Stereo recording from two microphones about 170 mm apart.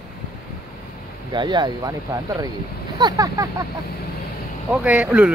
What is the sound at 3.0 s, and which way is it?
Speech, 20° right (ahead or behind).